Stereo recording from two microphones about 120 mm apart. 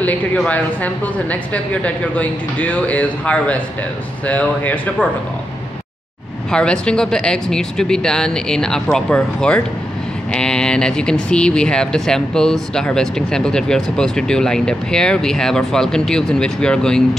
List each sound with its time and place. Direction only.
0.5 s a woman's voice: 10° left (ahead or behind)
6.5 s speech: 5° left (ahead or behind)